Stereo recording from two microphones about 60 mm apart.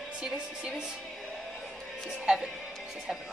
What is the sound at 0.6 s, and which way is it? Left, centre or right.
Speech, centre.